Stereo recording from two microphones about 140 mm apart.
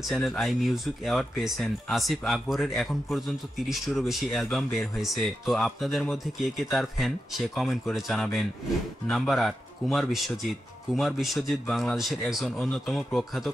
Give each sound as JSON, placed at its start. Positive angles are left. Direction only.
{"t": 0.1, "sound": "speech", "side_deg": 0}